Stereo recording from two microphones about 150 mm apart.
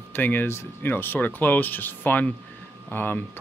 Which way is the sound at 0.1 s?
10° left (ahead or behind).